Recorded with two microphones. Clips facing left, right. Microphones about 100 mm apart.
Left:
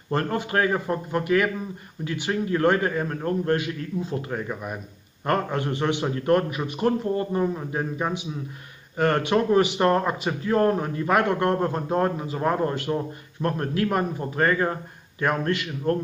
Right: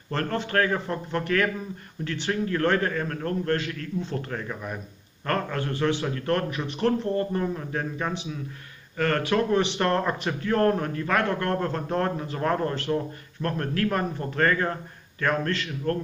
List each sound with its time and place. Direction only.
0.1 s speech: 15° left (ahead or behind)